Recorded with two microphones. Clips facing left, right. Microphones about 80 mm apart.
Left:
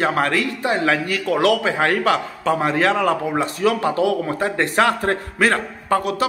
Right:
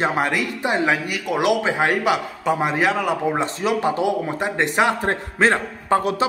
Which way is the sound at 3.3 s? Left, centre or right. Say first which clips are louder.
Left 2 dB; right.